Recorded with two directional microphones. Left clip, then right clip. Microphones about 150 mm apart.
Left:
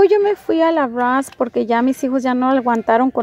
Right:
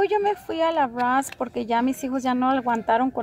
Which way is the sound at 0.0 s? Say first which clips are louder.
Left 9 dB; 35° left (ahead or behind).